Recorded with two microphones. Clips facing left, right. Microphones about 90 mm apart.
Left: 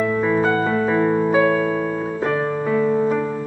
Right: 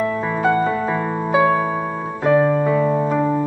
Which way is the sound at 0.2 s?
10° right (ahead or behind).